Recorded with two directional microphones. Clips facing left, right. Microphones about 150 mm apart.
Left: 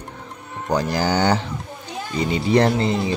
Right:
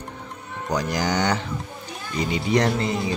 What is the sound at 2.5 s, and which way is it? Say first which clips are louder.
Speech: left 4 dB; 30° left (ahead or behind).